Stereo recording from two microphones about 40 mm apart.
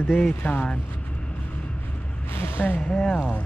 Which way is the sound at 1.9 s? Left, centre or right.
Left.